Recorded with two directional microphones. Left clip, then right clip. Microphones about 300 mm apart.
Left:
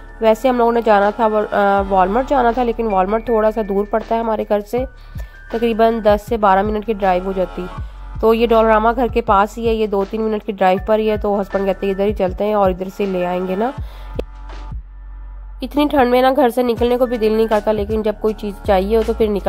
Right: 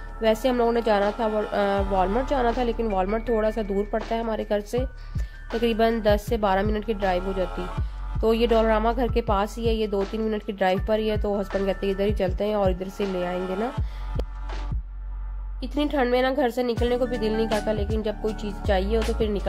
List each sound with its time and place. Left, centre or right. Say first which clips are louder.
0.2 s a woman's voice: left 8 dB; centre
14.2 s music: left 10 dB; centre
15.6 s a woman's voice: left 10 dB; centre